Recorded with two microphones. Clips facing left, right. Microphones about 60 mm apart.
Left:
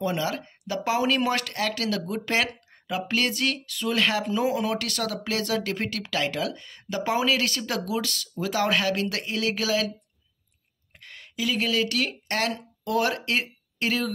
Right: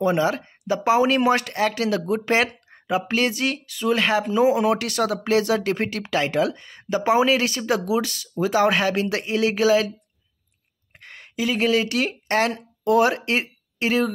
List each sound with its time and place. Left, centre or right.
0.0 s speech: right
11.0 s speech: right